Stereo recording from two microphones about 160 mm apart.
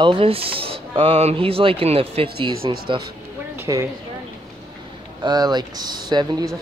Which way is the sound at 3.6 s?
20° right (ahead or behind).